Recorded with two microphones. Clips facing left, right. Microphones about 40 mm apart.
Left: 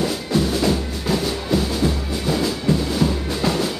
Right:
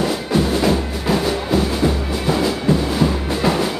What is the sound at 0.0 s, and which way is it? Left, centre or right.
Music, centre.